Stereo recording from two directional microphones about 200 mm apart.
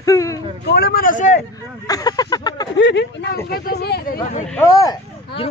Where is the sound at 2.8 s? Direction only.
60° left (ahead or behind).